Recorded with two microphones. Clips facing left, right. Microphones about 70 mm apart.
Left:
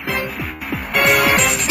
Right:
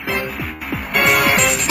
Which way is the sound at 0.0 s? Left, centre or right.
Centre.